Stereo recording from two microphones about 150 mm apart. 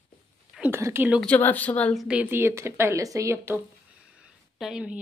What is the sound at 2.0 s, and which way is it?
Speech, 10° right (ahead or behind).